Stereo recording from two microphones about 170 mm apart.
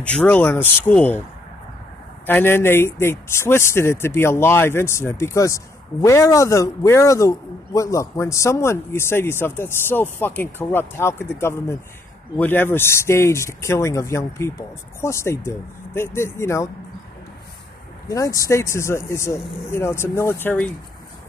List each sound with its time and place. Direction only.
0.0 s speech: 10° left (ahead or behind)
2.2 s speech: 10° left (ahead or behind)
18.0 s speech: 20° left (ahead or behind)